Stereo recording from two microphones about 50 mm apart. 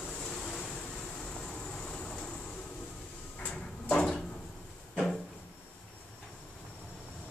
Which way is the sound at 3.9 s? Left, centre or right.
Centre.